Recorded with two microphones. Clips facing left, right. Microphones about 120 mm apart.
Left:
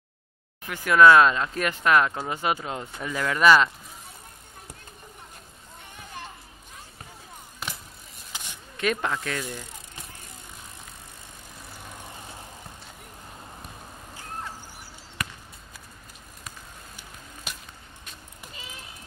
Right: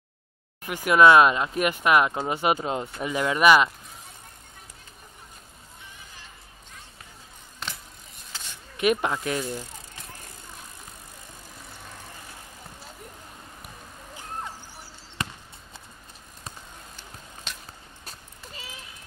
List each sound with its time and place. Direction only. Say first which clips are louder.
0.7 s speech: even; 15° right (ahead or behind)
5.9 s music: left 8 dB; 60° left (ahead or behind)
7.6 s vehicle: even; 5° left (ahead or behind)
8.3 s a sound: left 1 dB; 15° left (ahead or behind)
8.7 s speech: right 3 dB; 15° right (ahead or behind)
15.2 s basketball bounce: right 2 dB; 25° right (ahead or behind)
17.5 s a sound: left 1 dB; 5° left (ahead or behind)